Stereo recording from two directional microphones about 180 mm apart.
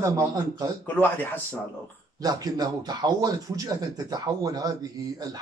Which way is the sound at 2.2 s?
20° right (ahead or behind).